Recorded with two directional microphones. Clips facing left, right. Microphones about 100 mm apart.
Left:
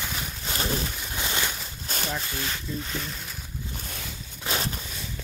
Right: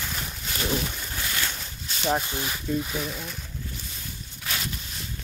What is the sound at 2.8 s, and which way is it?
Speech, 5° right (ahead or behind).